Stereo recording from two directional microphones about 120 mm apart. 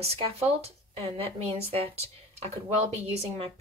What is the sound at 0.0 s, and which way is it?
Speech, 60° right (ahead or behind).